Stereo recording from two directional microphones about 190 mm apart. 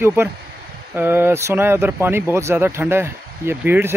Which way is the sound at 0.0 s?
10° right (ahead or behind).